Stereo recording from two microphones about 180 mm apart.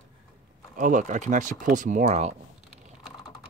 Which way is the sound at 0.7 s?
45° right (ahead or behind).